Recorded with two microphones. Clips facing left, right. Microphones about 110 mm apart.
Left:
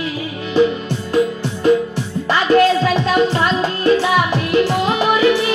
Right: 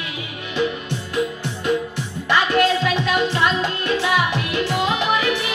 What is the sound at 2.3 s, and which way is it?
Music, 35° left (ahead or behind).